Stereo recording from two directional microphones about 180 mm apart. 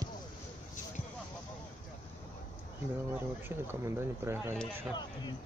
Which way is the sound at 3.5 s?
15° right (ahead or behind).